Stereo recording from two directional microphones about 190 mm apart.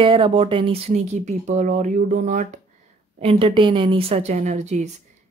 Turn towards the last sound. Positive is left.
turn(degrees=-35)  # may be behind; listen again after turning